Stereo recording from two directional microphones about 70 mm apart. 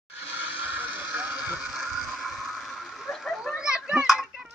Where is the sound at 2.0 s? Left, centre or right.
Centre.